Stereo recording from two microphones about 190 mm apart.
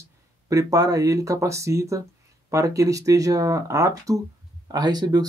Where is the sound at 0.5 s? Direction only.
20° right (ahead or behind).